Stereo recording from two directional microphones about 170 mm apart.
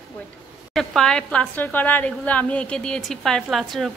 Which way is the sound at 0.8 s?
5° left (ahead or behind).